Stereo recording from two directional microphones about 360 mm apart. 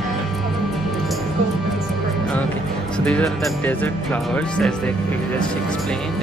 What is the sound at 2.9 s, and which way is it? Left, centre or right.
Speech, centre.